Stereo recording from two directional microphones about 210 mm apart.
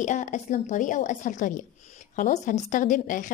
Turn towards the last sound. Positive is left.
turn(degrees=40)  # may be behind; listen again after turning